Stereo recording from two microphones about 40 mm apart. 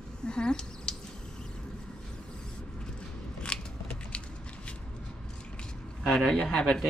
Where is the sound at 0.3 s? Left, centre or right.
Left.